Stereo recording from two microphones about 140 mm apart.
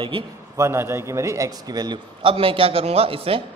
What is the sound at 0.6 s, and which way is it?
A man's voice, 15° right (ahead or behind).